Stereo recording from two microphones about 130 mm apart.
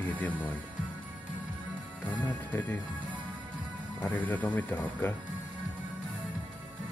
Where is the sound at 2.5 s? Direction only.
15° left (ahead or behind).